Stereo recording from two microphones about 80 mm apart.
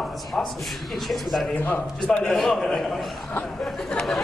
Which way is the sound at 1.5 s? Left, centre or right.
Centre.